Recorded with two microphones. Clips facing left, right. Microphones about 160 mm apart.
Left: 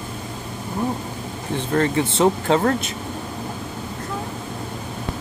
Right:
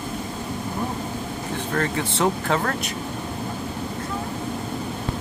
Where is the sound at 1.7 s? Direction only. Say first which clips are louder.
Left 6 dB; 25° left (ahead or behind).